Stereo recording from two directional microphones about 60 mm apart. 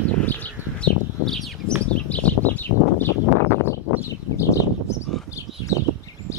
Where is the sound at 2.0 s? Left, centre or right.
Left.